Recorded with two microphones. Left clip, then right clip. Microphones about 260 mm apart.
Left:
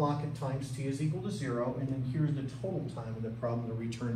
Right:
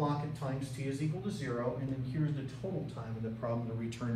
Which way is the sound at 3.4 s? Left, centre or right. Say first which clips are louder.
Left 2 dB; centre.